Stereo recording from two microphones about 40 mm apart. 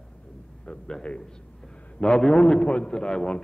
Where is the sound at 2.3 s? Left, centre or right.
Left.